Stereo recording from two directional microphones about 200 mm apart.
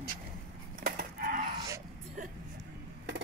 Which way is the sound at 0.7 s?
50° right (ahead or behind).